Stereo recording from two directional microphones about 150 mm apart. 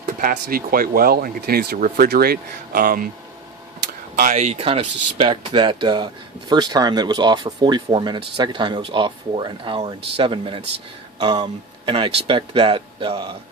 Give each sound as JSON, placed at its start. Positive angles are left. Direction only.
{"t": 0.3, "sound": "speech", "side_deg": -70}
{"t": 3.8, "sound": "a sound", "side_deg": -70}
{"t": 4.4, "sound": "speech", "side_deg": -45}